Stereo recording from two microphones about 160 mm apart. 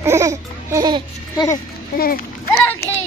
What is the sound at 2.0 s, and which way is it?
Speech, 65° left (ahead or behind).